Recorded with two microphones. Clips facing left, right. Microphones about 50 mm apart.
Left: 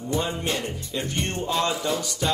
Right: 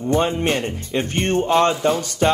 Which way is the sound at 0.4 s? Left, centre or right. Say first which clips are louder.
Right 7 dB; right.